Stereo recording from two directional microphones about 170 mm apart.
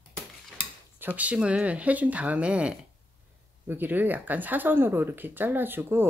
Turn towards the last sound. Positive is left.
turn(degrees=-15)  # may be behind; listen again after turning